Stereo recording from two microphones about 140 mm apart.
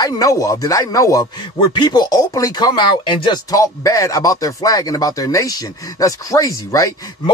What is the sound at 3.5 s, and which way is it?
Speech, 25° left (ahead or behind).